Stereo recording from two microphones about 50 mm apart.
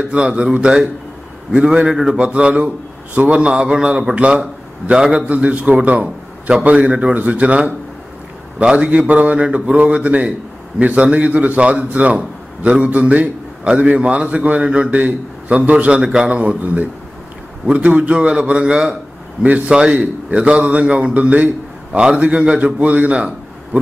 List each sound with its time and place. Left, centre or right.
0.1 s a man's voice: centre
5.3 s a man's voice: right
16.0 s a man's voice: centre
19.4 s a man's voice: right
19.7 s a man's voice: right